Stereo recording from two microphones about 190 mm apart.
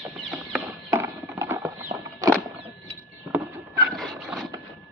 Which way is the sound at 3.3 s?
10° right (ahead or behind).